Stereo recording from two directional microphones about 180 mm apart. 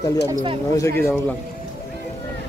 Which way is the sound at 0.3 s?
20° right (ahead or behind).